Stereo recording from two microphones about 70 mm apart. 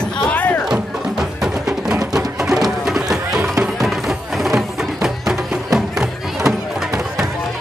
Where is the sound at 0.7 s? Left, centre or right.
Centre.